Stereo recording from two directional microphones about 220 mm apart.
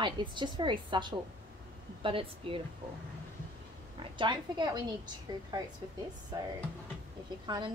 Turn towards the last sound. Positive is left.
turn(degrees=-20)  # may be behind; listen again after turning